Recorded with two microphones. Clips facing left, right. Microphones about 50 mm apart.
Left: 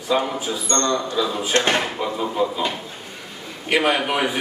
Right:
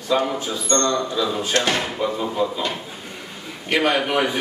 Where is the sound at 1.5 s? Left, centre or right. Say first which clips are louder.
Left 3 dB; left.